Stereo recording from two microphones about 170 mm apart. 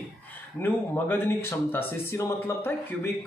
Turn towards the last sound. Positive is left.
turn(degrees=15)  # may be behind; listen again after turning